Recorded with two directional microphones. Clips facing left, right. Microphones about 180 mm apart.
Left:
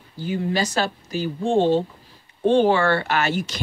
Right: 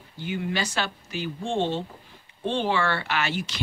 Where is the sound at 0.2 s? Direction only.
35° left (ahead or behind).